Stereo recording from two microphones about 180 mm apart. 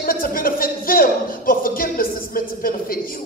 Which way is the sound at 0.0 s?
55° left (ahead or behind).